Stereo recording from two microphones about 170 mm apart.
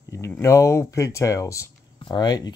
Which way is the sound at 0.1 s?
15° left (ahead or behind).